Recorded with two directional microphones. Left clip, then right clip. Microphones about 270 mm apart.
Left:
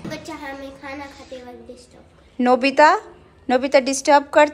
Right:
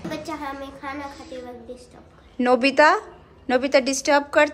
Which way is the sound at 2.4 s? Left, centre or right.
Centre.